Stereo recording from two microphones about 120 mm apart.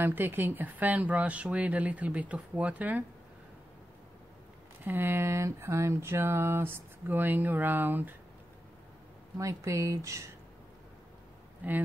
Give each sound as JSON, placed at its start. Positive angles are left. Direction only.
{"t": 0.0, "sound": "speech", "side_deg": -15}
{"t": 4.8, "sound": "speech", "side_deg": -20}
{"t": 9.4, "sound": "speech", "side_deg": -25}
{"t": 11.6, "sound": "speech", "side_deg": -15}